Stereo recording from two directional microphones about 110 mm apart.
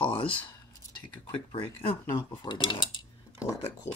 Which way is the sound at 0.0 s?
50° left (ahead or behind).